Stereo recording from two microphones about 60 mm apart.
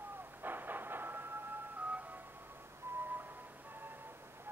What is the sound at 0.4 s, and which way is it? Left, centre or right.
Train, right.